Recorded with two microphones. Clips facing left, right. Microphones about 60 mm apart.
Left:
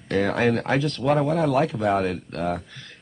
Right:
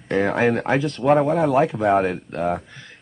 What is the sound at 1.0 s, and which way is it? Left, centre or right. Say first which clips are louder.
Speech: right 5 dB; right.